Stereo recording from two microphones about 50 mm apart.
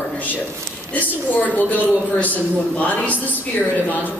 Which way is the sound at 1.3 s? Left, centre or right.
Left.